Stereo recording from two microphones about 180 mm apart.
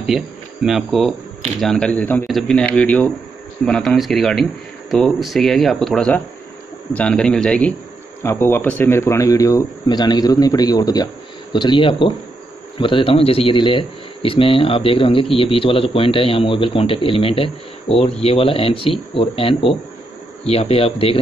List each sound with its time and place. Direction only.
0.0 s speech: centre (ahead or behind); by 21.2 s 30° left (ahead or behind)